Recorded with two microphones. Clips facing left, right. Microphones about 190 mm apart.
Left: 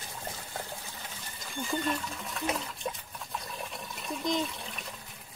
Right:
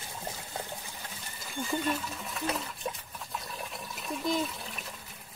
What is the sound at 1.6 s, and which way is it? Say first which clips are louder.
Speech: even; centre (ahead or behind).